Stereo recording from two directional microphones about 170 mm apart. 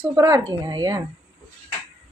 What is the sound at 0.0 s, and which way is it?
Speech, 15° right (ahead or behind).